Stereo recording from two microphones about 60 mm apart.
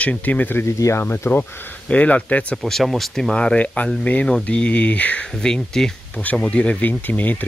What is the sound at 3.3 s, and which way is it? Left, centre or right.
Speech, centre.